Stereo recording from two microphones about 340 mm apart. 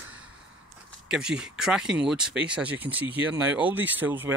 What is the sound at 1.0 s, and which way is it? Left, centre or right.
Speech, centre.